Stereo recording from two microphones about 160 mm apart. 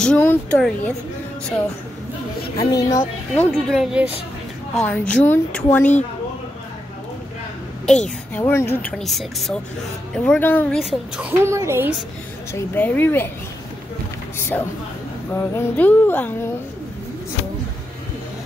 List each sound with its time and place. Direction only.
0.0 s speech: 10° left (ahead or behind)
2.6 s speech: 20° left (ahead or behind)
3.6 s speech: 5° right (ahead or behind)
4.8 s speech: 10° left (ahead or behind)
7.8 s a woman's voice: 5° left (ahead or behind)
11.1 s speech: 15° right (ahead or behind)
12.5 s speech: 10° left (ahead or behind)
14.5 s speech: 10° left (ahead or behind)